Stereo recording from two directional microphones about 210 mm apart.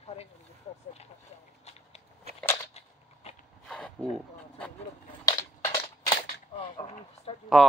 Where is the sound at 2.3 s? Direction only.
30° right (ahead or behind).